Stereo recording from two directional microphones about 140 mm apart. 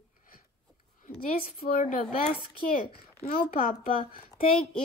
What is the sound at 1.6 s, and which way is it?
Speech, 75° left (ahead or behind).